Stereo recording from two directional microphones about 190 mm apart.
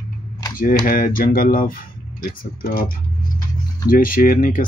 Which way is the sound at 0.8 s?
50° left (ahead or behind).